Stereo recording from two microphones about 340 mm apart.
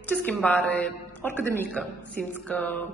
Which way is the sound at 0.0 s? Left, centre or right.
Centre.